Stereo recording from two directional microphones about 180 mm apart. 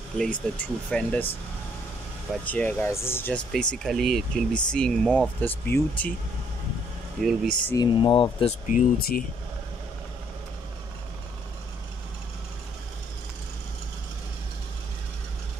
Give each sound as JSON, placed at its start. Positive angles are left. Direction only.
{"t": 0.2, "sound": "speech", "side_deg": 5}
{"t": 2.4, "sound": "speech", "side_deg": 10}
{"t": 7.2, "sound": "speech", "side_deg": 0}
{"t": 7.7, "sound": "speech", "side_deg": 25}
{"t": 8.6, "sound": "speech", "side_deg": 50}